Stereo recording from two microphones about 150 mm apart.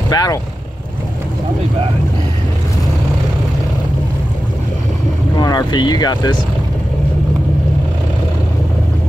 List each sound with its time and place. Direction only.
0.1 s speech: 25° left (ahead or behind)
5.4 s speech: 25° left (ahead or behind)